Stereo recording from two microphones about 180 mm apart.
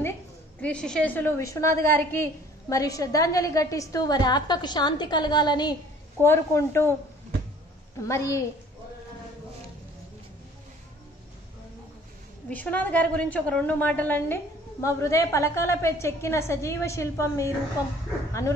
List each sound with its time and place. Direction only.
0.6 s a woman's voice: 5° left (ahead or behind); by 5.8 s 25° left (ahead or behind)
6.2 s a woman's voice: 15° left (ahead or behind)
8.1 s a woman's voice: 15° left (ahead or behind)
12.4 s a woman's voice: 10° left (ahead or behind)